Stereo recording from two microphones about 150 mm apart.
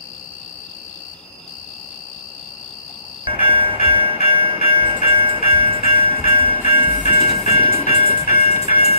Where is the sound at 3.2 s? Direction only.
35° right (ahead or behind).